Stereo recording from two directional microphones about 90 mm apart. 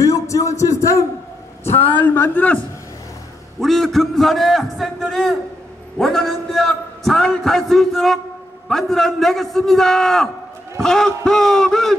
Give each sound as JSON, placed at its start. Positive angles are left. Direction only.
{"t": 0.0, "sound": "a sound", "side_deg": 35}
{"t": 2.2, "sound": "a man's voice", "side_deg": 20}
{"t": 3.6, "sound": "a man's voice", "side_deg": 0}